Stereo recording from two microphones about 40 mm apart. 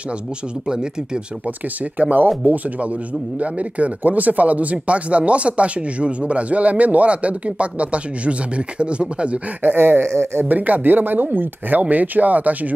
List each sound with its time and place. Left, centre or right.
0.7 s speech: centre
2.0 s speech: right
9.6 s a sound: right
10.5 s speech: right